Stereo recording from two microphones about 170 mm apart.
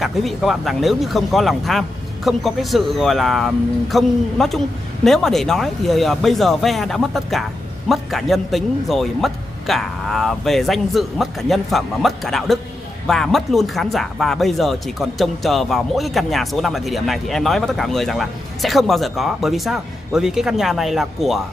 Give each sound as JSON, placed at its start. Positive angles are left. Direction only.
{"t": 0.0, "sound": "speech", "side_deg": 0}